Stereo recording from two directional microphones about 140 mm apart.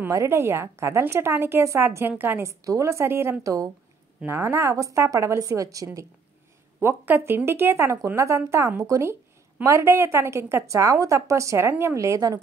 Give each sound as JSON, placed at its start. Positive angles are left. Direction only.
{"t": 0.1, "sound": "a woman's voice", "side_deg": -20}